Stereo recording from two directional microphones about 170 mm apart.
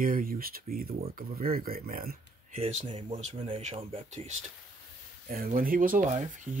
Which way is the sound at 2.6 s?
40° right (ahead or behind).